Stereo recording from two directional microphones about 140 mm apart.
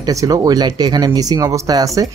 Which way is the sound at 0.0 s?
25° right (ahead or behind).